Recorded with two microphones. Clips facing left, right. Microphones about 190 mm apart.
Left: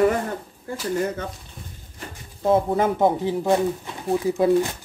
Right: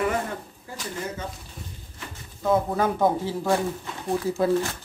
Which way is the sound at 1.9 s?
30° left (ahead or behind).